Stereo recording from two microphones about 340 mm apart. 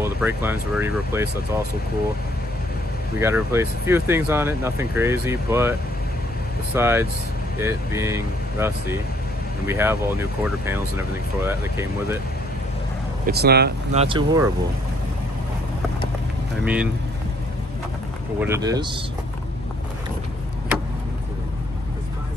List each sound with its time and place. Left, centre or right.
0.0 s speech: centre
3.2 s speech: centre
13.3 s speech: right
14.0 s speech: centre
16.6 s speech: centre
18.4 s speech: centre